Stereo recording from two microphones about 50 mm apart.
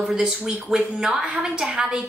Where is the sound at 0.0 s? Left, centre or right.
Centre.